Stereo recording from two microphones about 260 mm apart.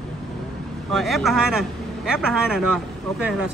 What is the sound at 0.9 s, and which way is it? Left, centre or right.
Speech, centre.